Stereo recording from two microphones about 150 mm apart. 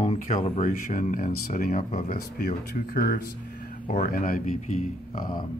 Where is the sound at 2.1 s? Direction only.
80° left.